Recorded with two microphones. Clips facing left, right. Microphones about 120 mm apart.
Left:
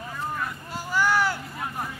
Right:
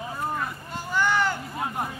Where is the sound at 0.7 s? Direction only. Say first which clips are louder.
Left 1 dB; 5° left (ahead or behind).